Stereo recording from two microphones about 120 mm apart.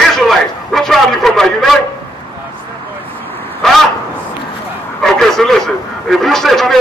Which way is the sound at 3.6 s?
5° left (ahead or behind).